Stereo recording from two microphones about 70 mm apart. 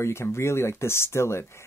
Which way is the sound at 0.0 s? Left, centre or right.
Left.